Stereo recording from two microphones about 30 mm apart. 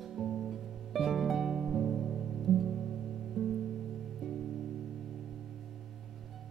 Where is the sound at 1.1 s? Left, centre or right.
Centre.